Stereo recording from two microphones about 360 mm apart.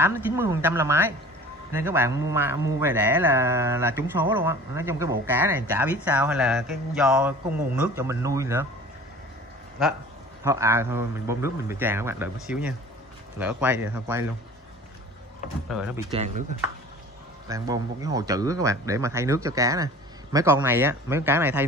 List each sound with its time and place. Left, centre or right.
0.0 s speech: centre
10.4 s speech: centre
16.1 s speech: centre
17.5 s speech: centre